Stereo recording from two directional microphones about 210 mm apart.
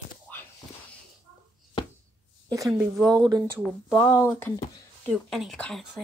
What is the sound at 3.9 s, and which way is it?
Speech, 15° left (ahead or behind).